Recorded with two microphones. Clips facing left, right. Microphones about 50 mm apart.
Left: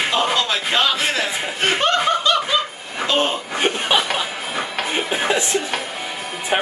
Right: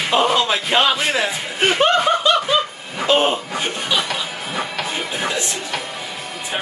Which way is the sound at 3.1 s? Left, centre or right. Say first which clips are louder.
Right 4 dB; centre.